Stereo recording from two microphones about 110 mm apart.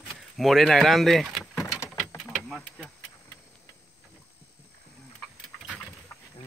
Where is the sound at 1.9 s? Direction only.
5° left (ahead or behind).